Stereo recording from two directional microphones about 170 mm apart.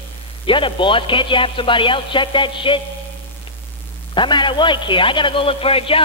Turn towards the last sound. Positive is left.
turn(degrees=35)  # may be behind; listen again after turning